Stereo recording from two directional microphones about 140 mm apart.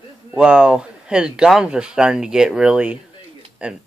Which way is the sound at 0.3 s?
5° right (ahead or behind).